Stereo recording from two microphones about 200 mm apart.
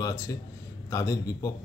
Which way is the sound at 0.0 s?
15° left (ahead or behind).